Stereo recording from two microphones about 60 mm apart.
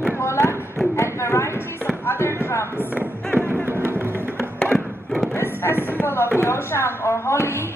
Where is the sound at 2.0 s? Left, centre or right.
Left.